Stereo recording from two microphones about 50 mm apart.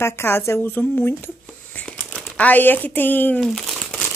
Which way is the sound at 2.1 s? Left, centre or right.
Left.